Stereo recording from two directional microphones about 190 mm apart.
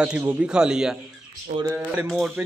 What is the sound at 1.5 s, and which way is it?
Speech, 30° right (ahead or behind).